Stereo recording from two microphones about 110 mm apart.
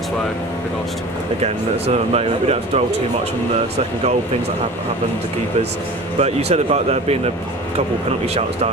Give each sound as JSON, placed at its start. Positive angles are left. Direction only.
{"t": 2.1, "sound": "speech", "side_deg": -70}
{"t": 6.1, "sound": "speech", "side_deg": -75}